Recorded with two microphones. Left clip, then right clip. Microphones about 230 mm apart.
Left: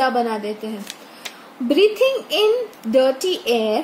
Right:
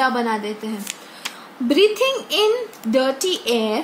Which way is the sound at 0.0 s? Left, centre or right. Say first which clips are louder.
Left 1 dB; centre.